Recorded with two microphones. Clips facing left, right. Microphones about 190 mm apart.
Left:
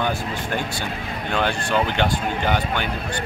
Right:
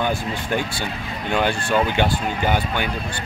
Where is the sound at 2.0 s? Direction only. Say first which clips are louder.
Right 1 dB; 10° right (ahead or behind).